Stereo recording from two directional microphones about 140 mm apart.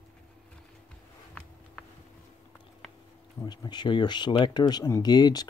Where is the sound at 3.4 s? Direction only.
30° left (ahead or behind).